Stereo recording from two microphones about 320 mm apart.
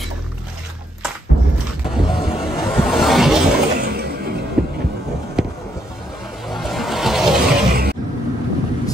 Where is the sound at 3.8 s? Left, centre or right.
Right.